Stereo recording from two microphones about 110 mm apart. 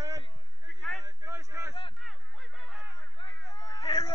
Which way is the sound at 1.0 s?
30° right (ahead or behind).